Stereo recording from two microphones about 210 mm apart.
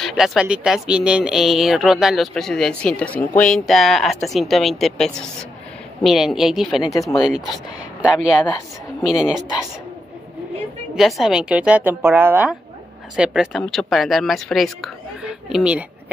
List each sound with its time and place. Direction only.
0.0 s speech: centre (ahead or behind)
6.8 s speech: 15° left (ahead or behind)
7.2 s speech: 5° right (ahead or behind)
11.0 s speech: centre (ahead or behind)